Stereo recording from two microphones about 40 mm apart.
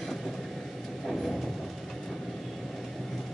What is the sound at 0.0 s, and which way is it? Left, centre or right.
Vehicle, centre.